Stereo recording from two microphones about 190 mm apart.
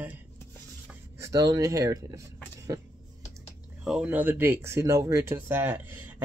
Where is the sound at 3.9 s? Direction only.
5° right (ahead or behind).